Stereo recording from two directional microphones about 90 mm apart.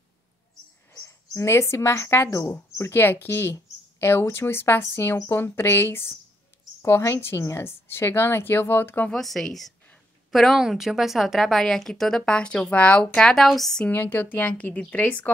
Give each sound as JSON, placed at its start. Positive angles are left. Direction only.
{"t": 1.0, "sound": "a woman's voice", "side_deg": 35}
{"t": 9.1, "sound": "a woman's voice", "side_deg": 5}
{"t": 13.1, "sound": "a woman's voice", "side_deg": 5}
{"t": 13.8, "sound": "a woman's voice", "side_deg": 20}